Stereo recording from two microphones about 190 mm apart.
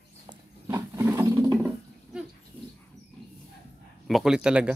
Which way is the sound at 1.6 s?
5° right (ahead or behind).